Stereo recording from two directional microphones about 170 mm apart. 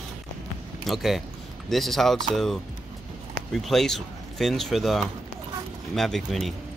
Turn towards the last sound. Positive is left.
turn(degrees=0)  # may be behind; listen again after turning